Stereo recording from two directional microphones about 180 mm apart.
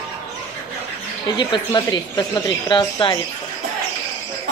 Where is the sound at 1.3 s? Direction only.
25° left (ahead or behind).